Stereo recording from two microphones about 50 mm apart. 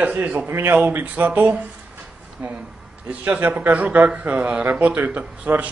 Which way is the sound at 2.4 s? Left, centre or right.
Right.